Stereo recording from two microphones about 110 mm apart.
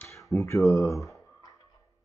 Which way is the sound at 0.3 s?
10° left (ahead or behind).